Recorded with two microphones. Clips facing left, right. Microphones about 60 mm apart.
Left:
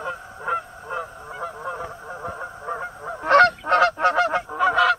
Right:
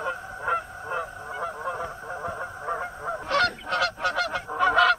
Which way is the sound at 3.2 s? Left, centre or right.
Left.